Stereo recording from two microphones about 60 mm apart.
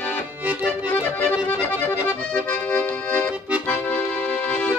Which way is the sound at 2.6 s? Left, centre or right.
Left.